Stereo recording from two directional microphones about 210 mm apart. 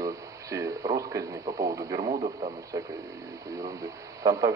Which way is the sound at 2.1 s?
30° right (ahead or behind).